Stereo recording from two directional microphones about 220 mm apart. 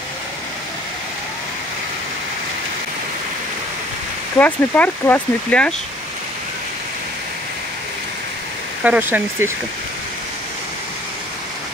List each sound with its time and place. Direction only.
4.4 s speech: 5° left (ahead or behind)
8.8 s speech: 5° right (ahead or behind)